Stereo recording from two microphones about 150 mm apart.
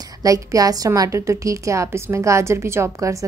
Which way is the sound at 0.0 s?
25° right (ahead or behind).